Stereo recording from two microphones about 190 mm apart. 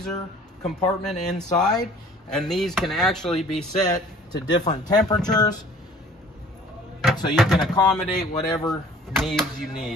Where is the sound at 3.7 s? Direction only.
20° left (ahead or behind).